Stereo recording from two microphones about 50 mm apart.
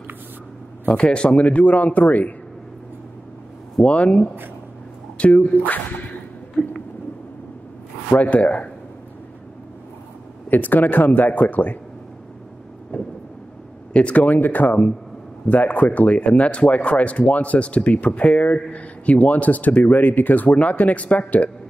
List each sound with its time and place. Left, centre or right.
0.8 s speech: left
3.8 s speech: left
6.6 s a sound: centre
8.1 s speech: left
10.5 s speech: left
13.9 s speech: left